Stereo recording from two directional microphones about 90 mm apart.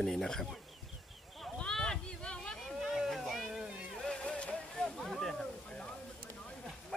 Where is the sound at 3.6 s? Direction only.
10° right (ahead or behind).